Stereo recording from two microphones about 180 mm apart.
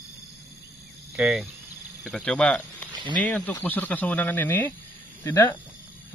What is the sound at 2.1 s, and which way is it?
Speech, 5° left (ahead or behind).